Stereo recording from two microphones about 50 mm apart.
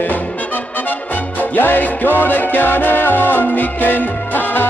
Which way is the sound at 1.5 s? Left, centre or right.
Left.